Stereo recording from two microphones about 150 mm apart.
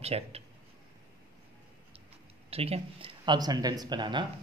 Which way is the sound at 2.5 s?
40° right (ahead or behind).